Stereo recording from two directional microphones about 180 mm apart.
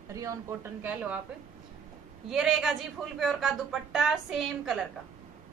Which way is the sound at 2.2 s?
Centre (ahead or behind).